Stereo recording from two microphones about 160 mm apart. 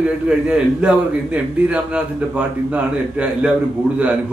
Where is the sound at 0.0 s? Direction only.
5° right (ahead or behind).